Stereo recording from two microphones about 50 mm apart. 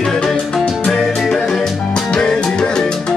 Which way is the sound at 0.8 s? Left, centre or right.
Centre.